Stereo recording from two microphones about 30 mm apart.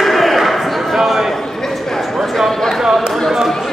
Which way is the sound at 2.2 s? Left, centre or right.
Centre.